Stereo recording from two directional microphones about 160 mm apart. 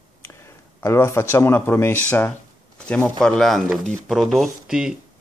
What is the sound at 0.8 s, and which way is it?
Speech, 15° left (ahead or behind).